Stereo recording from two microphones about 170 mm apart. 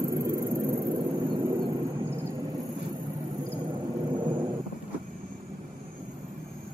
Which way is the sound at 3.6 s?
25° right (ahead or behind).